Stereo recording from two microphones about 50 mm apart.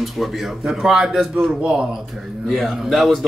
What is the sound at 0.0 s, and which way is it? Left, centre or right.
Speech, centre.